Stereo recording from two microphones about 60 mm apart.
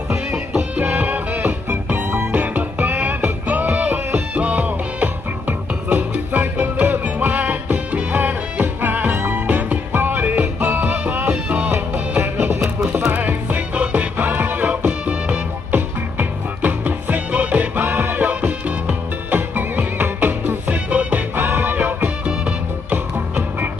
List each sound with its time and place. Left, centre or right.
0.1 s music: centre
0.7 s music: right
12.5 s music: centre